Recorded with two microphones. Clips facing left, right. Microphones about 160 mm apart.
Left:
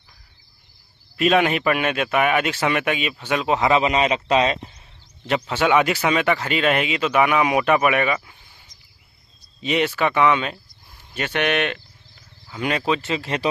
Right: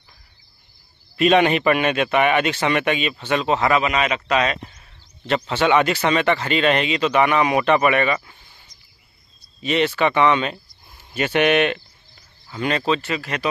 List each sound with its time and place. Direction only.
1.1 s a man's voice: centre (ahead or behind)
3.7 s speech: 30° left (ahead or behind)
5.2 s speech: 10° left (ahead or behind)
9.6 s a man's voice: 15° left (ahead or behind); by 11.8 s 5° right (ahead or behind)
12.4 s speech: 10° left (ahead or behind)
13.1 s speech: 30° left (ahead or behind)